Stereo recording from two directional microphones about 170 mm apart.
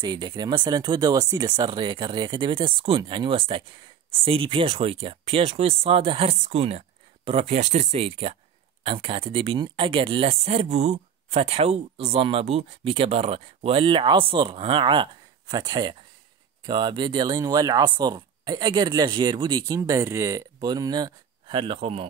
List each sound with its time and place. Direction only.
0.0 s speech: 25° right (ahead or behind)